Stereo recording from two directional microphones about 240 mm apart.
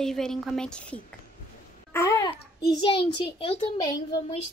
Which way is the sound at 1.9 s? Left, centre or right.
Centre.